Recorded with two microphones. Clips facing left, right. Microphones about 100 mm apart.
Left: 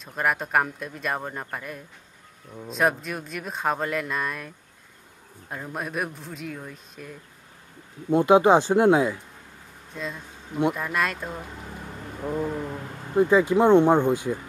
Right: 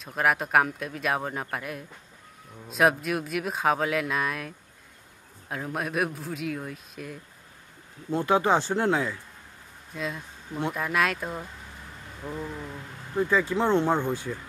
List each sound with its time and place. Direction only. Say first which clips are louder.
0.0 s speech: right 1 dB; centre (ahead or behind)
8.1 s speech: left 6 dB; 20° left (ahead or behind)
9.9 s speech: right 1 dB; 5° right (ahead or behind)
12.4 s a sound: left 8 dB; 40° left (ahead or behind)
13.1 s speech: left 6 dB; 20° left (ahead or behind)